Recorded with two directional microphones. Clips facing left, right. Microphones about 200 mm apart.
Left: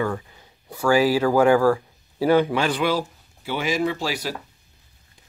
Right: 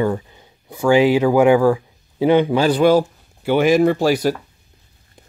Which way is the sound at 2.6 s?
40° right (ahead or behind).